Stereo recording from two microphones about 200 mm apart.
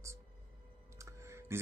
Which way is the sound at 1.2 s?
15° right (ahead or behind).